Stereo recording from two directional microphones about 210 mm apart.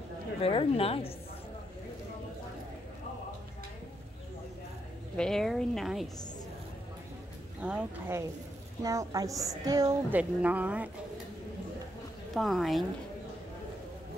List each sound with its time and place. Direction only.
0.4 s speech: 25° left (ahead or behind)
5.1 s a woman's voice: 5° left (ahead or behind)
7.6 s a woman's voice: 5° right (ahead or behind)
8.8 s a woman's voice: 15° right (ahead or behind)
10.4 s a woman's voice: 5° right (ahead or behind)
12.4 s a woman's voice: centre (ahead or behind)